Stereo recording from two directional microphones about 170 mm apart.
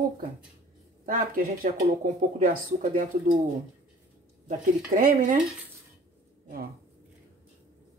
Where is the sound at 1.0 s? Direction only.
55° right (ahead or behind).